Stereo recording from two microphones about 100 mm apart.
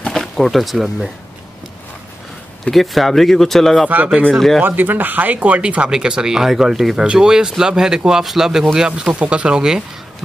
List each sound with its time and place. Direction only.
0.0 s speech: 5° left (ahead or behind)
2.6 s speech: centre (ahead or behind)
3.9 s speech: 15° right (ahead or behind)
4.4 s speech: centre (ahead or behind)
4.6 s speech: 20° right (ahead or behind)